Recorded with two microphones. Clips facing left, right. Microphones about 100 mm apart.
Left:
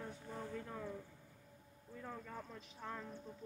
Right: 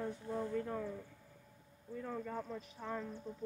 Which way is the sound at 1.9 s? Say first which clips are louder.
Right 7 dB; centre (ahead or behind).